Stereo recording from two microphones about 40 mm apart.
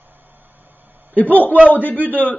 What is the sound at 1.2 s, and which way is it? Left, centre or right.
Speech, left.